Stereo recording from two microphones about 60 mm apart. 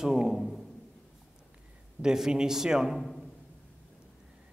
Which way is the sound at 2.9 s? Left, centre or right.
Centre.